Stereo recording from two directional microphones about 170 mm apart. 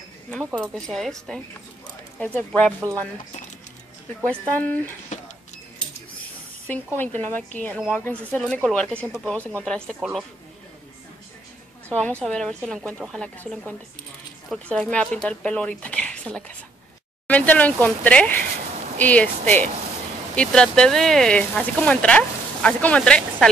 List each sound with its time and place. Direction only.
0.6 s speech: centre (ahead or behind)
4.2 s speech: 10° left (ahead or behind)
5.1 s a sound: 45° left (ahead or behind)
7.0 s speech: 10° left (ahead or behind)
11.9 s speech: 5° left (ahead or behind)